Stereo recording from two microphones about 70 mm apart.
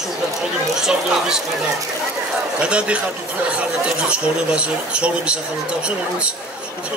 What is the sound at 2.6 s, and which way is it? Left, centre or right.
Speech, centre.